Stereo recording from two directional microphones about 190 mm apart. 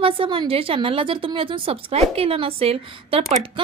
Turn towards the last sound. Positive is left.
turn(degrees=-30)  # may be behind; listen again after turning